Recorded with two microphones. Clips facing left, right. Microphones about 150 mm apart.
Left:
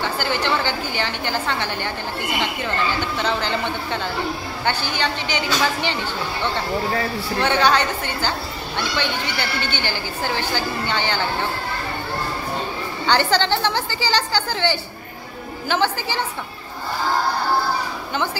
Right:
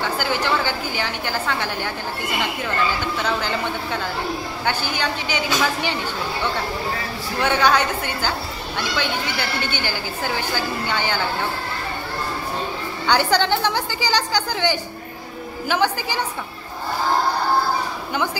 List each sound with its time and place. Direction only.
0.2 s a woman's voice: 10° right (ahead or behind)
3.2 s a woman's voice: 5° right (ahead or behind)
7.4 s a woman's voice: 5° right (ahead or behind)
13.0 s a woman's voice: 10° right (ahead or behind)
18.1 s a woman's voice: 10° right (ahead or behind)